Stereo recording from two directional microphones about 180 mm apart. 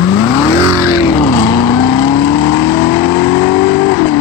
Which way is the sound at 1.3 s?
20° left (ahead or behind).